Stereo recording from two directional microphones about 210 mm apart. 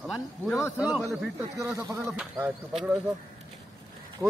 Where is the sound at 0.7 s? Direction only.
5° right (ahead or behind).